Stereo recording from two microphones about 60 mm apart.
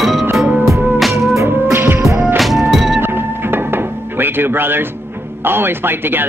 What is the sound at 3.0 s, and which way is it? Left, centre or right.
Music, right.